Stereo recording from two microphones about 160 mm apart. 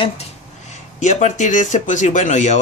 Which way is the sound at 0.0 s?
45° left (ahead or behind).